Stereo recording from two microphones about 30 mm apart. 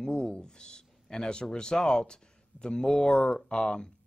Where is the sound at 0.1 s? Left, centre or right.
Left.